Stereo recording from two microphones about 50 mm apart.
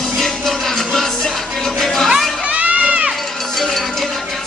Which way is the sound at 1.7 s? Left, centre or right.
Centre.